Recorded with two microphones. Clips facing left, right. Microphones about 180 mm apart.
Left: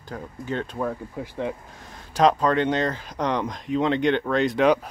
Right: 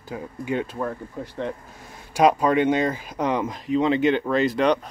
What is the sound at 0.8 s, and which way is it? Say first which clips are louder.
Speech: left 1 dB; 5° left (ahead or behind).